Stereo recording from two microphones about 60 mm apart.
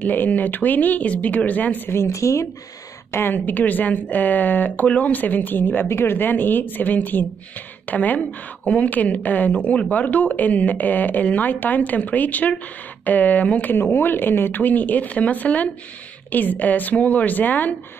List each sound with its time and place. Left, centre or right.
0.0 s speech: left
1.9 s speech: left
3.1 s speech: left